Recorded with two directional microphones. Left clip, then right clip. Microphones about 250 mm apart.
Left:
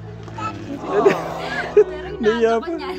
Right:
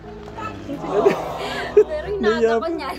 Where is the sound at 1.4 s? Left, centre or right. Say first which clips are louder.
Left 1 dB; right.